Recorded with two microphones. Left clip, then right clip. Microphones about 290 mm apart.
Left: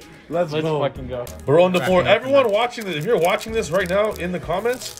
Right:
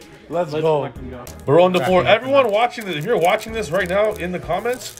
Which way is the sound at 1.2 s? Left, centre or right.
Centre.